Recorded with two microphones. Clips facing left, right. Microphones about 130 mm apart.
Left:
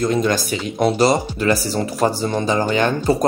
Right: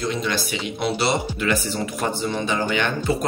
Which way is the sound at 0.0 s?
45° left (ahead or behind).